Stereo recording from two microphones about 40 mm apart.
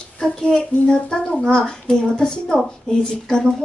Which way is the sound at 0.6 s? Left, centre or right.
Left.